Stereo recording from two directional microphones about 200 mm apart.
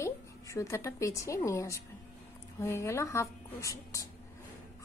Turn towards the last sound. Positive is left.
turn(degrees=15)  # may be behind; listen again after turning